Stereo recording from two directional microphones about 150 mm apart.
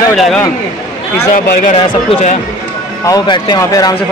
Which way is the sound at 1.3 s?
60° left (ahead or behind).